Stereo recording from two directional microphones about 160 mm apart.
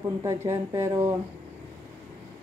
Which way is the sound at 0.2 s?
15° right (ahead or behind).